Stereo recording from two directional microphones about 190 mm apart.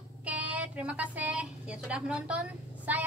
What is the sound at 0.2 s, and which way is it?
A woman's voice, 10° right (ahead or behind).